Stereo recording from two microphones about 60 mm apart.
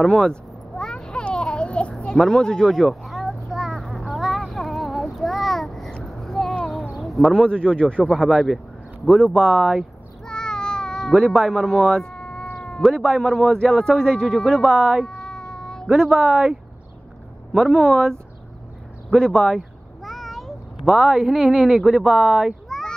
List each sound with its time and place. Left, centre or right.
0.0 s a sound: centre
6.9 s speech: centre
10.2 s meow: centre
12.5 s cat: centre
12.8 s speech: centre
15.0 s cat: centre
15.9 s speech: centre
19.5 s meow: centre
21.1 s speech: centre
21.4 s speech: centre